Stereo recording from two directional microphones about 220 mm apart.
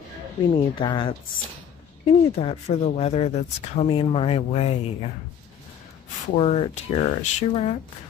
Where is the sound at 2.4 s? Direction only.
30° left (ahead or behind).